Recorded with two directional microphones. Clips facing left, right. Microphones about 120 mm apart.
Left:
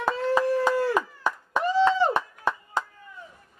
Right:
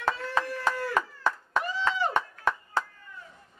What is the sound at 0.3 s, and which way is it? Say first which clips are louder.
Chopping: left 7 dB; 25° left (ahead or behind).